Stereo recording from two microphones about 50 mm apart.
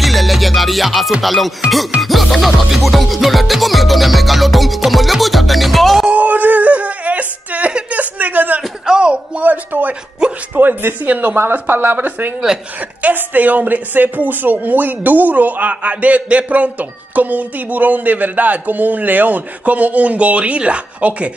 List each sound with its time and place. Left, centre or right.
0.0 s music: centre
6.0 s a sound: right
8.8 s a sound: centre
9.4 s speech: right
11.1 s speech: right
11.5 s speech: right